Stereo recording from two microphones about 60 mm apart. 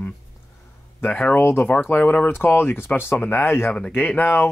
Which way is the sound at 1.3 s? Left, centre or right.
Left.